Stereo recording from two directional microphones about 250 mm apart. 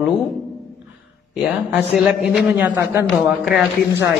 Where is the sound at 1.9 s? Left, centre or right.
Centre.